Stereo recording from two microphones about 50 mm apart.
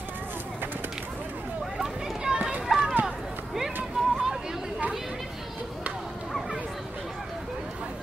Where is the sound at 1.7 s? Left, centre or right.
Centre.